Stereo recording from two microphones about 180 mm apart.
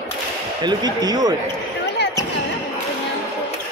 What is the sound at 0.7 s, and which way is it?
Speech, 20° right (ahead or behind).